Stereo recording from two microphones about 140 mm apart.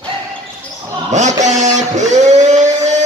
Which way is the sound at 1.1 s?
60° right (ahead or behind).